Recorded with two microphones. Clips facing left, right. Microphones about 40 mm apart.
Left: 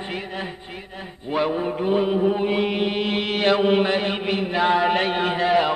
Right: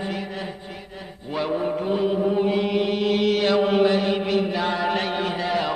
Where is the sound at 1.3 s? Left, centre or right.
Left.